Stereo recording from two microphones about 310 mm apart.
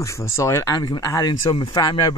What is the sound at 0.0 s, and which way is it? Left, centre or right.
Speech, centre.